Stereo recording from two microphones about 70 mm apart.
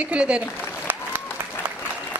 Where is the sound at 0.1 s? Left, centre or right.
Centre.